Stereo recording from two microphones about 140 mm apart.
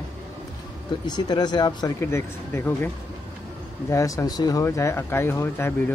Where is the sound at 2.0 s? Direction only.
20° left (ahead or behind).